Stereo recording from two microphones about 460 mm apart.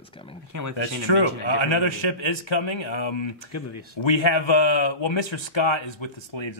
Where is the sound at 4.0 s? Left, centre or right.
Left.